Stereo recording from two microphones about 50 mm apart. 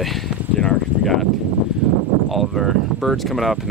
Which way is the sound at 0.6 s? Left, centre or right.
Centre.